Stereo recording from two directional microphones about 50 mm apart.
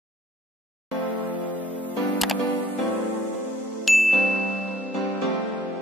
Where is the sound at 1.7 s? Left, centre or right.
Left.